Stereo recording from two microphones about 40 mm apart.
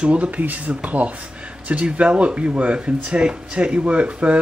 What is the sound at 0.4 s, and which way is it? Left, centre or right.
Speech, right.